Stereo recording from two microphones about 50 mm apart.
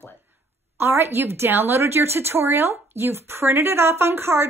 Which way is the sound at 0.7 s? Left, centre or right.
Right.